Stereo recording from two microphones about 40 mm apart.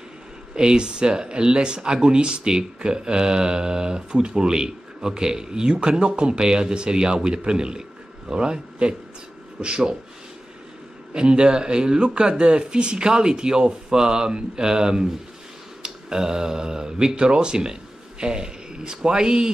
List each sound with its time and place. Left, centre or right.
0.6 s speech: centre
11.1 s speech: right